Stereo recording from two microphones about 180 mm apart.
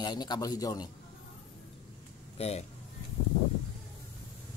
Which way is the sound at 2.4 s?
35° left (ahead or behind).